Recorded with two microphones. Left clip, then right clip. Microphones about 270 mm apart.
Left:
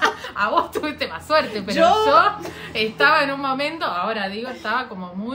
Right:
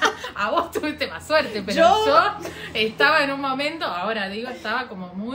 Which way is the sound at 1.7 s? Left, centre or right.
Centre.